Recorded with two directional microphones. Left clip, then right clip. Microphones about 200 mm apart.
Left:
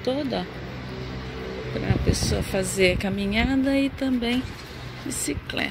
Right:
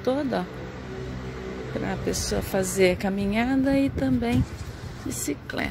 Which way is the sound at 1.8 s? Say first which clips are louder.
Left 2 dB; 10° right (ahead or behind).